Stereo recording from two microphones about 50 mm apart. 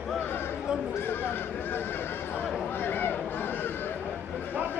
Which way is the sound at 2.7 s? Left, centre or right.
Left.